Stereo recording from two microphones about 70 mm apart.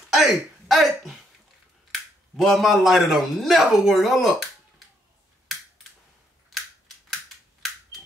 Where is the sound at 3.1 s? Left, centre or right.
Centre.